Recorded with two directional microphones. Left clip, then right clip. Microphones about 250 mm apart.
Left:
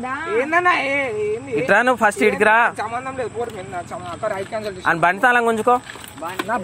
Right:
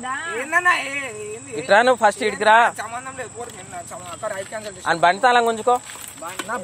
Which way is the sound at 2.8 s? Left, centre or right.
Right.